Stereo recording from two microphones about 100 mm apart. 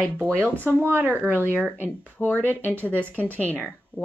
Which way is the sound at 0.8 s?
20° right (ahead or behind).